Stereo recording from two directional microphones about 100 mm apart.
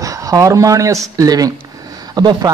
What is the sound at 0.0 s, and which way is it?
A man's voice, 35° right (ahead or behind).